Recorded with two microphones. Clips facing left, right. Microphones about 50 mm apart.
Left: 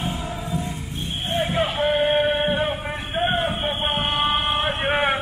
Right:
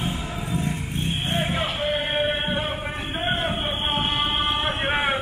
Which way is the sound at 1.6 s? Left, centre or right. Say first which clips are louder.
Left 4 dB; centre.